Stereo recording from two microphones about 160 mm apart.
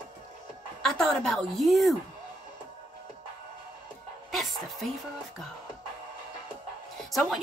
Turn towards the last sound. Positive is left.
turn(degrees=0)  # may be behind; listen again after turning